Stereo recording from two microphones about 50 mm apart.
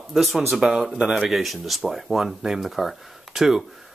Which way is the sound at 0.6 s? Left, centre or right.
Centre.